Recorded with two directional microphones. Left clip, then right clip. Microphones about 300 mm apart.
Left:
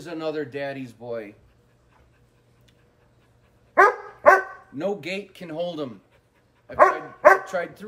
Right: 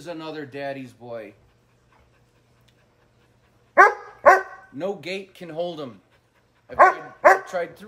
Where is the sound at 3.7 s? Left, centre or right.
Right.